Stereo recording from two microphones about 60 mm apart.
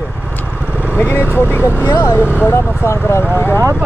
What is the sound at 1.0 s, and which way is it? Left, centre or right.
Speech, left.